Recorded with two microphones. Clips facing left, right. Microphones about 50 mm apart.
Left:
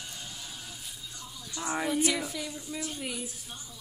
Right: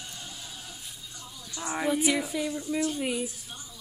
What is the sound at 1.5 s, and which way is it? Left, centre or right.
Speech, centre.